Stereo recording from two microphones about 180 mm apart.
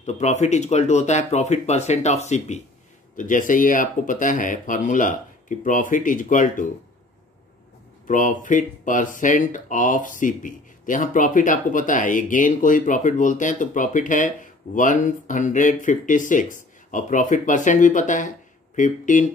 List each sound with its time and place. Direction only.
0.0 s speech: 40° left (ahead or behind)
8.1 s speech: 45° left (ahead or behind)